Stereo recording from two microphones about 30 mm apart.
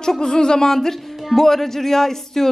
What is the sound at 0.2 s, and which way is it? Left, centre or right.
Speech, left.